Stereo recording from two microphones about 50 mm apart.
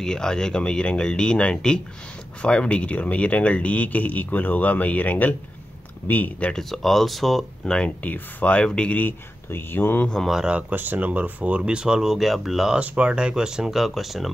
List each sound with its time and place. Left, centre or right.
0.0 s speech: centre; by 6.3 s left
6.5 s speech: centre
7.6 s speech: centre
8.0 s speech: left
8.5 s speech: centre
9.5 s speech: left
10.7 s speech: right; by 12.7 s centre
12.7 s speech: right; by 14.3 s centre